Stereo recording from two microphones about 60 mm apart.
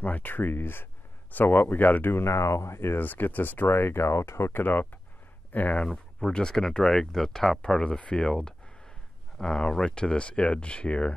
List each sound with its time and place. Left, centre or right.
0.0 s speech: left
2.1 s speech: left
3.0 s speech: left
5.9 s speech: centre